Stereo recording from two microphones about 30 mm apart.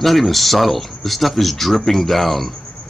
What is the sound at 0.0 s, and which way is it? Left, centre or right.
Speech, centre.